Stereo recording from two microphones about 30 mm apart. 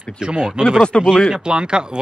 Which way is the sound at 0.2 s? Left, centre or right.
Right.